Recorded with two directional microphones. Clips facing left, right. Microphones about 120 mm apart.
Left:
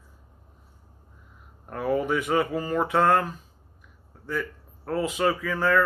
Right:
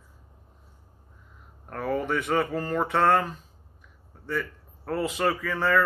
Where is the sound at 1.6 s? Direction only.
5° left (ahead or behind).